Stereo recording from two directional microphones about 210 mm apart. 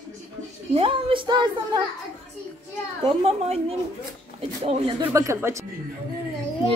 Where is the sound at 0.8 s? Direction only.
25° right (ahead or behind).